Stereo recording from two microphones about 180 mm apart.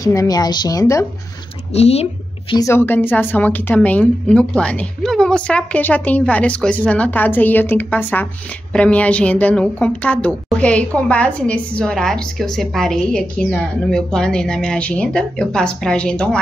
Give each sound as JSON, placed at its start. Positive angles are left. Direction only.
{"t": 0.0, "sound": "a woman's voice", "side_deg": 20}
{"t": 1.7, "sound": "speech", "side_deg": 35}
{"t": 2.5, "sound": "a woman's voice", "side_deg": 15}